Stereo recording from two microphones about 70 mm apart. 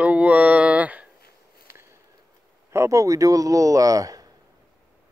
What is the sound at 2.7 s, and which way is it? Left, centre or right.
Speech, right.